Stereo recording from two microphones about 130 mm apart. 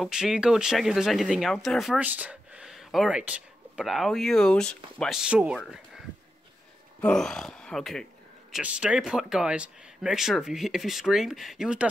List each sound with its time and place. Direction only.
0.0 s speech: 5° right (ahead or behind)
2.0 s speech: 10° right (ahead or behind); by 5.2 s 5° left (ahead or behind)
5.2 s speech: 10° right (ahead or behind)
7.0 s speech: 5° left (ahead or behind)